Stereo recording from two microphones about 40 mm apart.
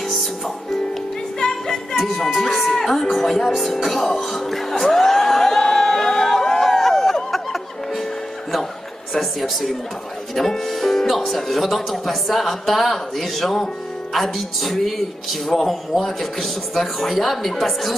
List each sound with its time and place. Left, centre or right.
0.0 s music: centre
1.4 s music: centre
2.0 s speech: centre
4.9 s crowd: centre
9.1 s speech: centre